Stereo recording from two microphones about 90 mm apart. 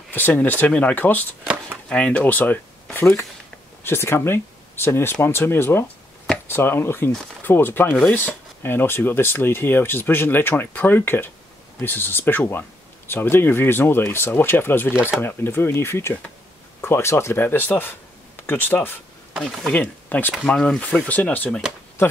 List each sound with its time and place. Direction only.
0.1 s speech: 20° left (ahead or behind)
14.9 s speech: 15° right (ahead or behind)
15.1 s speech: 25° left (ahead or behind)
19.3 s speech: 5° right (ahead or behind)
19.7 s speech: 20° left (ahead or behind)